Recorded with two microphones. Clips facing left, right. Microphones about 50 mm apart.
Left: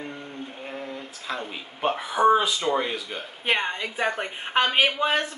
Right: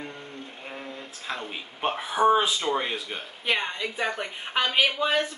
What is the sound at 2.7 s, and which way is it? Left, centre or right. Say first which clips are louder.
Speech: left 2 dB; centre.